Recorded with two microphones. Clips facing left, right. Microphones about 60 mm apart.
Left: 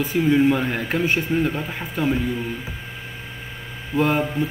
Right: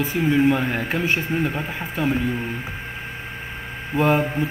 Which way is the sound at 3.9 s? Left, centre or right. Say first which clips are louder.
Right 1 dB; centre.